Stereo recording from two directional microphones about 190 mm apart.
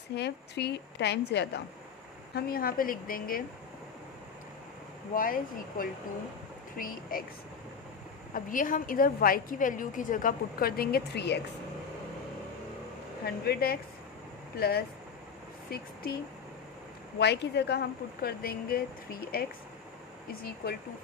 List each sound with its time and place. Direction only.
0.1 s speech: 60° left (ahead or behind)
2.3 s a woman's voice: 50° left (ahead or behind)
5.1 s a woman's voice: 45° left (ahead or behind)
8.3 s a woman's voice: 45° left (ahead or behind); by 11.4 s 60° left (ahead or behind)
13.2 s speech: 55° left (ahead or behind)
17.2 s speech: 60° left (ahead or behind)
20.6 s a woman's voice: 50° left (ahead or behind)